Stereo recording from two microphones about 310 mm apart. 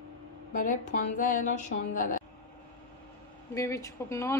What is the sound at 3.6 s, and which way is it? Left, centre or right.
Speech, centre.